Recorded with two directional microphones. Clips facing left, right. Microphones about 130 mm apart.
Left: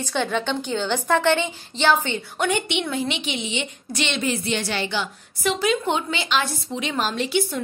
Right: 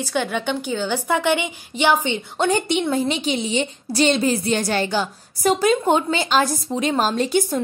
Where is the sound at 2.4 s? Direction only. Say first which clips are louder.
Right 4 dB; 40° right (ahead or behind).